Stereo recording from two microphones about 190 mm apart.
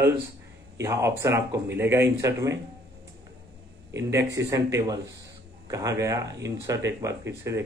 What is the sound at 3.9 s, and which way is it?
Speech, 15° right (ahead or behind).